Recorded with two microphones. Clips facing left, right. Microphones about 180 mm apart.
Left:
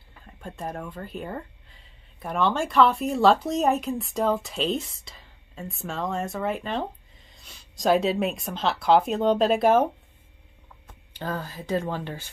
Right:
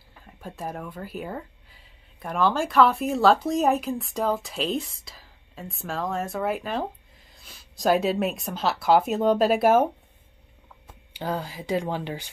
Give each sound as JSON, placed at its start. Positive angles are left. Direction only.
{"t": 0.3, "sound": "speech", "side_deg": -5}
{"t": 10.9, "sound": "speech", "side_deg": -10}